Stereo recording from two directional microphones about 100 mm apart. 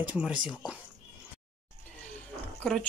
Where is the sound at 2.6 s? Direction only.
5° left (ahead or behind).